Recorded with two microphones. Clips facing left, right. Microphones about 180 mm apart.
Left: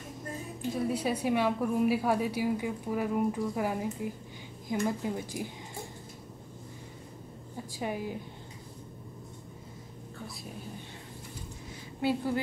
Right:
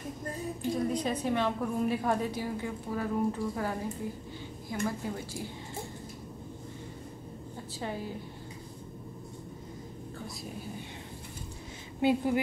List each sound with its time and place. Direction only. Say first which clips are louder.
0.7 s a woman's voice: left 2 dB; 5° left (ahead or behind)
7.8 s a woman's voice: left 2 dB; 15° left (ahead or behind)
12.0 s a woman's voice: right 3 dB; 20° right (ahead or behind)